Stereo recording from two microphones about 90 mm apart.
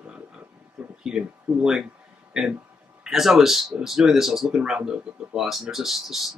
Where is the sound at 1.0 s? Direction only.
10° right (ahead or behind).